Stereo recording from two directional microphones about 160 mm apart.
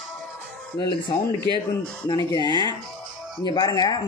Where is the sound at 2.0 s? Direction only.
25° left (ahead or behind).